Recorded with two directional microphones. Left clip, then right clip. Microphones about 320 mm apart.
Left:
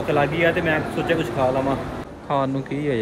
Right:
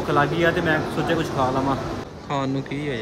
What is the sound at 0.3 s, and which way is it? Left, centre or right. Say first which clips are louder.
Speech: left 1 dB; right.